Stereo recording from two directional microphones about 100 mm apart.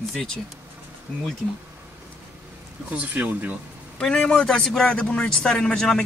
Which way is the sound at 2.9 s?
15° right (ahead or behind).